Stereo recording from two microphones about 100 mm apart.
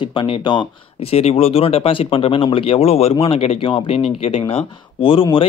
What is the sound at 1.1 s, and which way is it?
Speech, 75° left (ahead or behind).